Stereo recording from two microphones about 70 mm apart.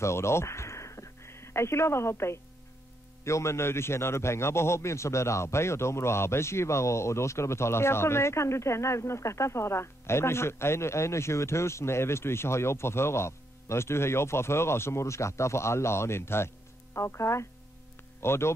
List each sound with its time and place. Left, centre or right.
0.0 s a man's voice: left